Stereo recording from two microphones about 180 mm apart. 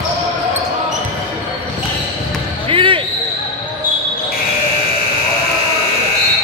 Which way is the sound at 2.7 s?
30° right (ahead or behind).